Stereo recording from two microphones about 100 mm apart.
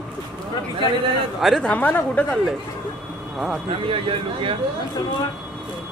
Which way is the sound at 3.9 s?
65° right (ahead or behind).